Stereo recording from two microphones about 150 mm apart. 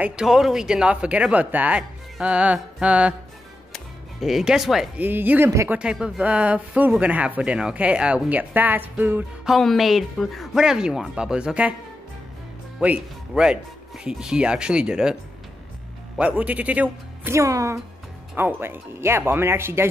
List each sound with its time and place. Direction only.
0.0 s speech: 5° right (ahead or behind)
5.8 s speech: 5° right (ahead or behind)
9.5 s speech: centre (ahead or behind)
12.7 s speech: 5° right (ahead or behind)
16.2 s speech: 10° right (ahead or behind)